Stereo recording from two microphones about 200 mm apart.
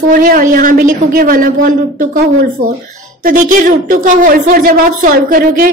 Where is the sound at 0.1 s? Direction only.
45° right (ahead or behind).